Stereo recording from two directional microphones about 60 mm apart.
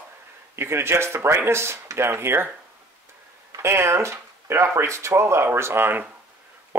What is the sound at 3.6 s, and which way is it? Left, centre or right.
Speech, right.